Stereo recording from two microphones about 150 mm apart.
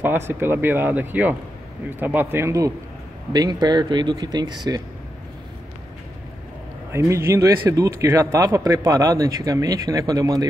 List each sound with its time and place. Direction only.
0.0 s speech: 15° right (ahead or behind)
6.9 s speech: 20° right (ahead or behind)